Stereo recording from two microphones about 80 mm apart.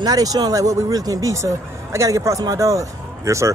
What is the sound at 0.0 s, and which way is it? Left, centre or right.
Speech, right.